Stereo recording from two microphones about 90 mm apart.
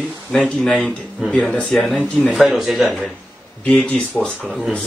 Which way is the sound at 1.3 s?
15° left (ahead or behind).